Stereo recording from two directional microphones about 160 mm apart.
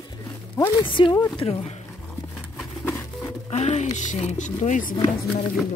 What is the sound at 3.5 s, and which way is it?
Speech, 45° left (ahead or behind).